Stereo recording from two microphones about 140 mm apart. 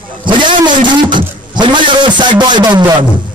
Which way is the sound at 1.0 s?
35° right (ahead or behind).